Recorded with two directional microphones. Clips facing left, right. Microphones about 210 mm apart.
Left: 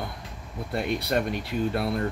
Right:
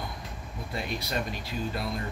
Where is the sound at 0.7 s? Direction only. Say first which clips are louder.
Left 7 dB; 60° left (ahead or behind).